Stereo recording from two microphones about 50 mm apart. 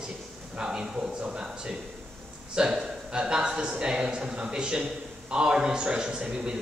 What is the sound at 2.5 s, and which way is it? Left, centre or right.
A man's voice, centre.